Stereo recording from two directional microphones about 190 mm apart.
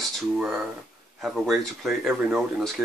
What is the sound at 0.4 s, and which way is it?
Speech, 5° right (ahead or behind).